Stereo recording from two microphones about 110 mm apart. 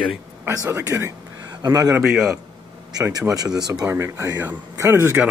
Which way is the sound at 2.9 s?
30° right (ahead or behind).